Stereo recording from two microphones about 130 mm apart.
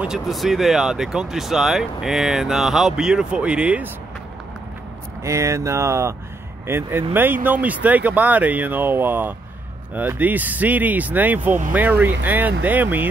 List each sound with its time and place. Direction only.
0.0 s speech: centre (ahead or behind)
5.2 s speech: 20° right (ahead or behind)